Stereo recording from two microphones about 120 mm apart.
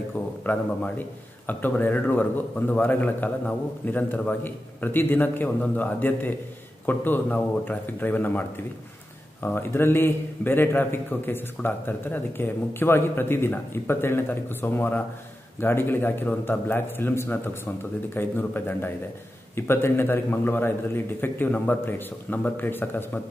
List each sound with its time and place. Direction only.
0.5 s a man's voice: 15° left (ahead or behind)